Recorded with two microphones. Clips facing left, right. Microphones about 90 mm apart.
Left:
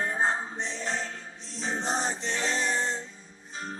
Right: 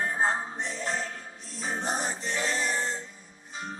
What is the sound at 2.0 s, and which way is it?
Choir, 25° left (ahead or behind).